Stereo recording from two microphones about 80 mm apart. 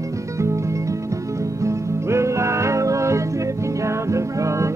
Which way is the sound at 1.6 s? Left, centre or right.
Right.